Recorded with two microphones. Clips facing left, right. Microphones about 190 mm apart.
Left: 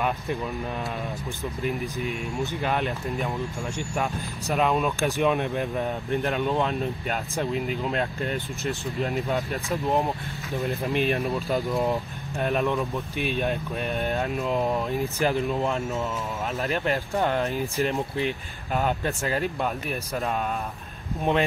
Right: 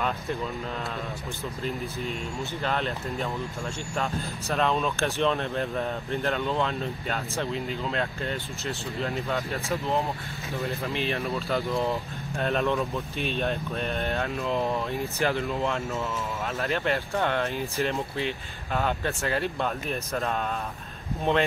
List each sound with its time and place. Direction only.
2.6 s speech: 15° left (ahead or behind)
16.6 s speech: 15° left (ahead or behind)